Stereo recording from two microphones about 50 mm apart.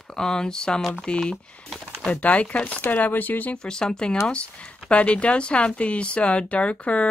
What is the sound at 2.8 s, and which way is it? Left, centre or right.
Speech, left.